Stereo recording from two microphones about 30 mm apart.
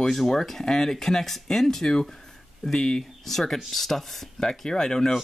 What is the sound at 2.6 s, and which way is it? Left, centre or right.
Speech, centre.